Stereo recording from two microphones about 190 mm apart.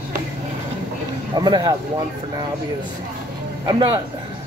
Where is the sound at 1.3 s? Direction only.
25° right (ahead or behind).